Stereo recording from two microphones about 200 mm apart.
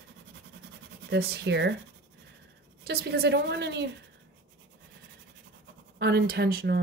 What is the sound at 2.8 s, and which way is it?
A woman's voice, 50° right (ahead or behind).